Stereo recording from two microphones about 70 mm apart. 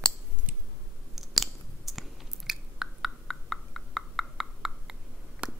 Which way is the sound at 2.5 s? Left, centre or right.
Centre.